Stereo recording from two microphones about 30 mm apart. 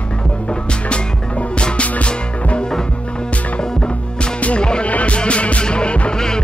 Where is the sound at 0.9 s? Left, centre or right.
Left.